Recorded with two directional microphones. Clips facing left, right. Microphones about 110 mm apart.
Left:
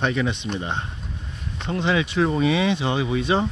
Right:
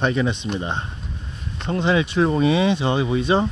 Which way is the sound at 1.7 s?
40° right (ahead or behind).